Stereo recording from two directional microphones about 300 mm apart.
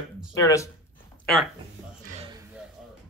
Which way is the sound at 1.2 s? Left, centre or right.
Centre.